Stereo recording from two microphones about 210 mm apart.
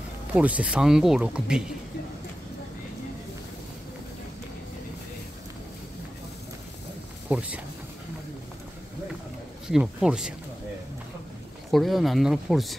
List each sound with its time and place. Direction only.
0.3 s speech: 5° right (ahead or behind)
7.2 s speech: 5° right (ahead or behind)
9.7 s speech: 5° right (ahead or behind)
11.7 s speech: centre (ahead or behind)